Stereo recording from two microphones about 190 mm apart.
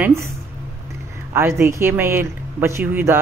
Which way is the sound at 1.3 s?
15° right (ahead or behind).